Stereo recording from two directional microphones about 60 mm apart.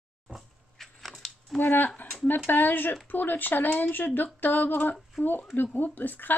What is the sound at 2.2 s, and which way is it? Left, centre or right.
Speech, left.